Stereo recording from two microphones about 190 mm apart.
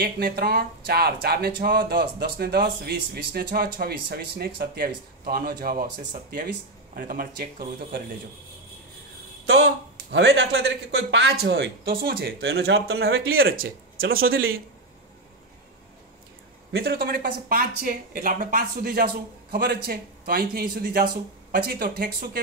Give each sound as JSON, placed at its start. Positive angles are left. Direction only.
{"t": 0.0, "sound": "speech", "side_deg": -55}
{"t": 7.0, "sound": "speech", "side_deg": -50}
{"t": 10.1, "sound": "speech", "side_deg": -70}
{"t": 13.1, "sound": "speech", "side_deg": -90}
{"t": 13.5, "sound": "speech", "side_deg": -50}
{"t": 16.7, "sound": "speech", "side_deg": -55}